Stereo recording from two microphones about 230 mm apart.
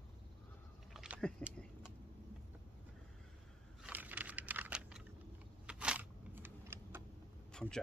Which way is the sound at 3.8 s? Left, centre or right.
Centre.